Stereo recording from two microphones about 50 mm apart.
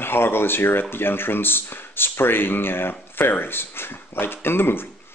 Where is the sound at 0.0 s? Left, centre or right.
Left.